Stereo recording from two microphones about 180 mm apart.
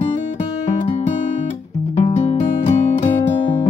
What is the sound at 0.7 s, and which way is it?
Music, 40° left (ahead or behind).